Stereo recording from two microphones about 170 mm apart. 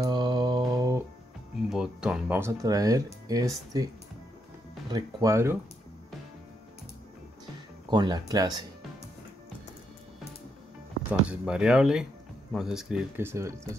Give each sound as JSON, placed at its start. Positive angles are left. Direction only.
{"t": 0.0, "sound": "mantra", "side_deg": -25}
{"t": 1.7, "sound": "music", "side_deg": -5}
{"t": 2.3, "sound": "speech", "side_deg": -15}
{"t": 4.9, "sound": "speech", "side_deg": -20}
{"t": 7.9, "sound": "speech", "side_deg": -25}
{"t": 11.1, "sound": "speech", "side_deg": -5}